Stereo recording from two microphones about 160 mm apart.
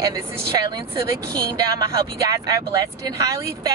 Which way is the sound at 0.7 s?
25° right (ahead or behind).